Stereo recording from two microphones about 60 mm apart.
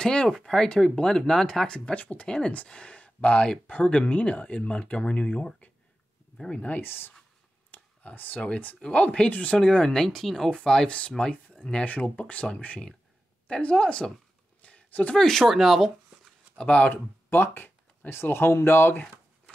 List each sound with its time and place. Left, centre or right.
0.0 s speech: centre
6.6 s speech: left
7.7 s speech: left
14.6 s a sound: left
15.1 s speech: centre
16.5 s speech: centre
16.9 s speech: left